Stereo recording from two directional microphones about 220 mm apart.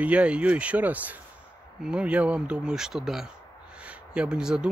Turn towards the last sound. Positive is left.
turn(degrees=-5)  # may be behind; listen again after turning